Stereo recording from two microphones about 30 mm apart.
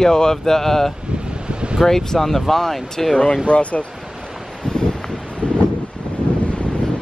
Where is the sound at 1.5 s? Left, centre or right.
Right.